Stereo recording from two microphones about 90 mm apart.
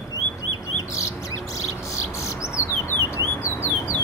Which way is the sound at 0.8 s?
35° left (ahead or behind).